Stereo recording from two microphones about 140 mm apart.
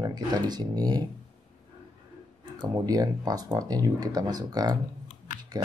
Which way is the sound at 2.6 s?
25° right (ahead or behind).